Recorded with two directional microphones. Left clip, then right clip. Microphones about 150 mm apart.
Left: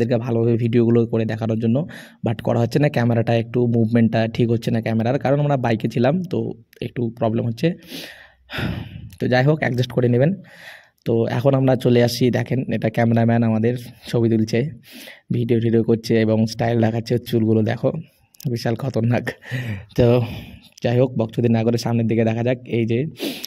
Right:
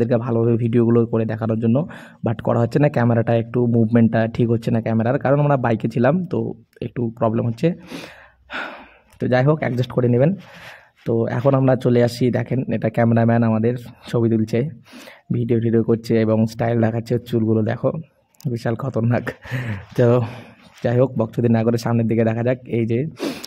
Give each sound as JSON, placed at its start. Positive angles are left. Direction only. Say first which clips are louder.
{"t": 0.0, "sound": "speech", "louder": "right 1 dB", "side_deg": 25}